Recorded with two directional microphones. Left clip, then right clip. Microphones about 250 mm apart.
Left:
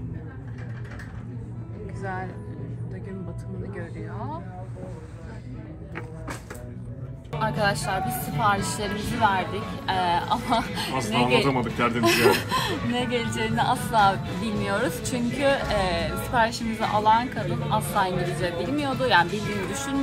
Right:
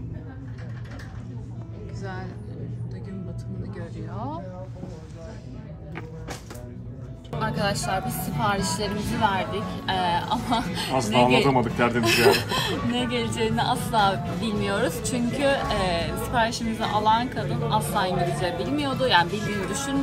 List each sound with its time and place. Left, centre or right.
2.0 s speech: centre
7.3 s speech: centre
11.4 s a man's voice: right
12.0 s speech: centre